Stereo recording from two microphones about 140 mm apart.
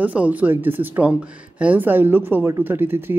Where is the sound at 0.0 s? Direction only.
10° right (ahead or behind).